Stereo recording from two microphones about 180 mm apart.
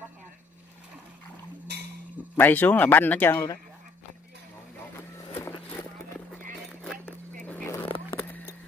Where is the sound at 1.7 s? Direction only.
65° right (ahead or behind).